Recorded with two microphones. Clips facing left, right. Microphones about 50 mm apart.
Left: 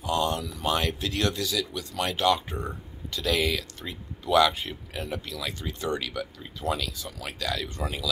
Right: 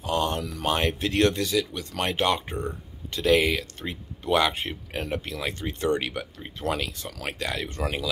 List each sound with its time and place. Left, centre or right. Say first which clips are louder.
0.0 s a sound: even; right
0.4 s speech: right 3 dB; right
0.7 s speech: right 2 dB; right
7.1 s speech: right 3 dB; right
7.3 s speech: left 1 dB; right